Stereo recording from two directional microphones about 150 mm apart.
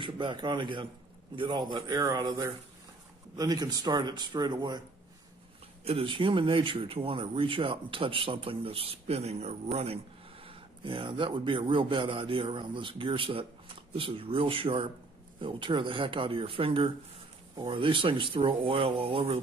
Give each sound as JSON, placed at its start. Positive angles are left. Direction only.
{"t": 0.0, "sound": "a man's voice", "side_deg": -30}
{"t": 5.9, "sound": "speech", "side_deg": -40}